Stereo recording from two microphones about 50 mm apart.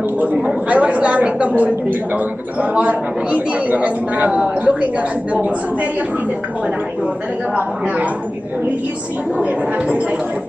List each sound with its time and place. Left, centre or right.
0.7 s a woman's voice: right
2.7 s a woman's voice: right
9.4 s a woman's voice: right